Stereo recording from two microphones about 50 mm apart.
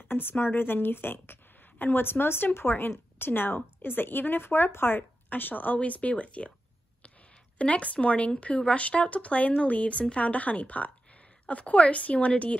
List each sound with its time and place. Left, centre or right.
0.1 s a woman's voice: left
7.5 s speech: left